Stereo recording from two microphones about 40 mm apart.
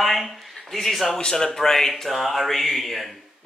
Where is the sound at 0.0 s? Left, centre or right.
Centre.